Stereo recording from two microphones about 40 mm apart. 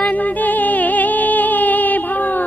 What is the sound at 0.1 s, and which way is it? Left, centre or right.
Music, left.